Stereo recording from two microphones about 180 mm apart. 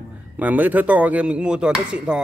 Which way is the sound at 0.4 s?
10° right (ahead or behind).